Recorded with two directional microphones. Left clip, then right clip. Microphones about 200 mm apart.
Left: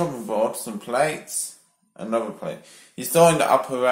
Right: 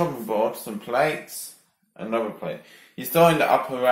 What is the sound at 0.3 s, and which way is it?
Speech, 10° left (ahead or behind).